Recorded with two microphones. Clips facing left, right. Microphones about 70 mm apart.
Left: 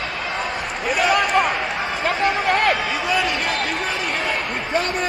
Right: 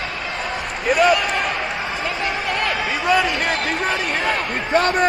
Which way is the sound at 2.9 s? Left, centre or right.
Right.